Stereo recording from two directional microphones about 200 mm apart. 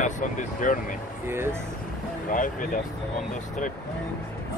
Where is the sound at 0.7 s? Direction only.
40° left (ahead or behind).